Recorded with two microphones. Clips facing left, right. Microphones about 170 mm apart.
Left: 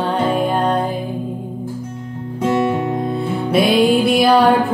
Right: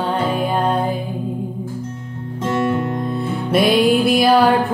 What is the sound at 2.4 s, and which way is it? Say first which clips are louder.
Music: left 2 dB; 5° left (ahead or behind).